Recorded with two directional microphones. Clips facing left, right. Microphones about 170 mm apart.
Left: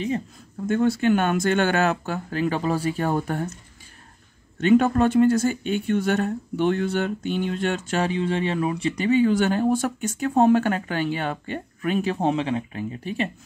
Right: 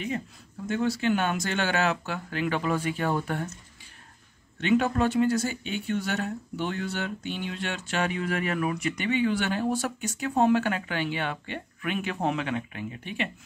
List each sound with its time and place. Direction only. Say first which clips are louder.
0.7 s speech: left 6 dB; 50° left (ahead or behind)
4.6 s speech: left 6 dB; 45° left (ahead or behind)
8.1 s speech: left 5 dB; 25° left (ahead or behind)